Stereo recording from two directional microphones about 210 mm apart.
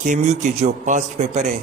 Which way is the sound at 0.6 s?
35° right (ahead or behind).